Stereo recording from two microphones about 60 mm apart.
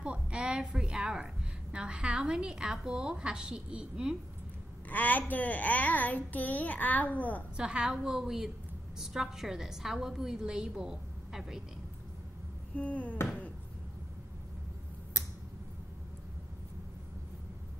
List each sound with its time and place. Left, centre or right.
0.0 s a woman's voice: centre
4.8 s a child's voice: left
7.5 s a woman's voice: centre
12.7 s a child's voice: left